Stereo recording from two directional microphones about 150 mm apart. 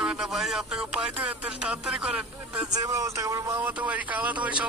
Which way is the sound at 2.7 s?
20° right (ahead or behind).